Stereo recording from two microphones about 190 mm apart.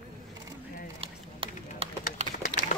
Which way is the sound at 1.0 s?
30° right (ahead or behind).